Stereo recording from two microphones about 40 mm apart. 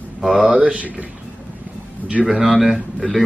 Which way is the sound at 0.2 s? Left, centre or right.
Centre.